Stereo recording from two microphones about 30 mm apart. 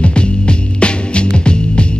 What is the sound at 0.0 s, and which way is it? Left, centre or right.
Music, left.